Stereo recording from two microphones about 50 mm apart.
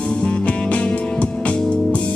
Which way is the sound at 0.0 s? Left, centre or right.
Left.